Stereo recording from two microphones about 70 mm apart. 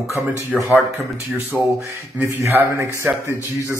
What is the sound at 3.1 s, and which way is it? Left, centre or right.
Speech, centre.